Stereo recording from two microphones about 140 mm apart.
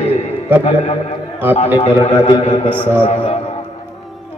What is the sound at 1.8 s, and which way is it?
Speech, 45° left (ahead or behind).